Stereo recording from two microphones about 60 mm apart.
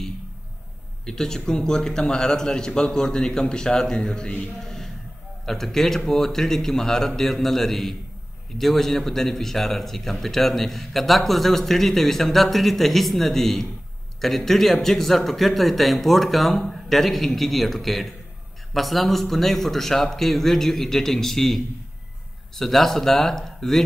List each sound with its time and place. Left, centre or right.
1.0 s a man's voice: centre
22.6 s a man's voice: centre